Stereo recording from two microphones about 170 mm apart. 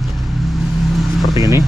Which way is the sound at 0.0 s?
Centre (ahead or behind).